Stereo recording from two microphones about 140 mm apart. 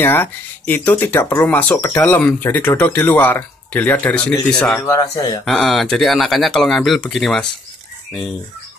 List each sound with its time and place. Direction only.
0.0 s speech: 15° left (ahead or behind)
4.7 s speech: 20° left (ahead or behind)
5.4 s speech: 5° left (ahead or behind)